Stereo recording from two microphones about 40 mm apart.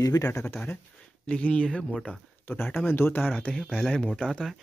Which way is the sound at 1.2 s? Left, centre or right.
Left.